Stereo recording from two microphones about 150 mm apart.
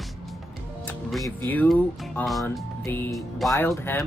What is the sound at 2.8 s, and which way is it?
Speech, 15° left (ahead or behind).